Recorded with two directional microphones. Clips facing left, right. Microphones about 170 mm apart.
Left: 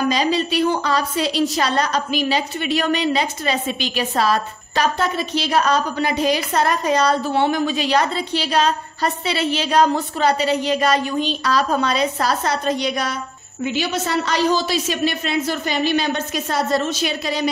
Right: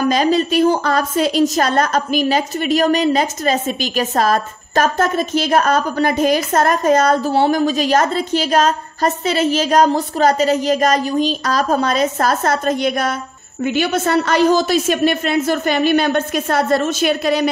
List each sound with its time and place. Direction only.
0.1 s a woman's voice: 50° right (ahead or behind)